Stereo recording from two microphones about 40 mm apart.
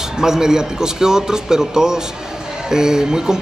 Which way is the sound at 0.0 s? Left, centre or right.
Centre.